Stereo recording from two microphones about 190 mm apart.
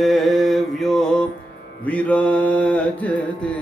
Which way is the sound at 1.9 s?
5° left (ahead or behind).